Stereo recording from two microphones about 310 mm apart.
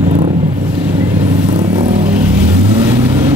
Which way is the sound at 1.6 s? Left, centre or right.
Centre.